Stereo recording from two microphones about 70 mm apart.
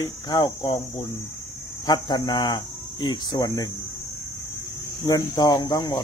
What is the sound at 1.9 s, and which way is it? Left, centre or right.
Speech, left.